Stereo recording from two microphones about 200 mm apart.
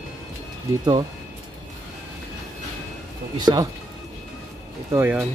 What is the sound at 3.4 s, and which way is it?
Speech, 20° right (ahead or behind).